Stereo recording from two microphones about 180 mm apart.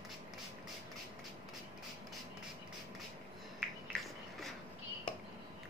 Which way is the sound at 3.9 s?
5° left (ahead or behind).